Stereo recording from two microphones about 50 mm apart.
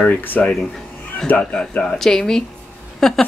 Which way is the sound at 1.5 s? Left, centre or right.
Centre.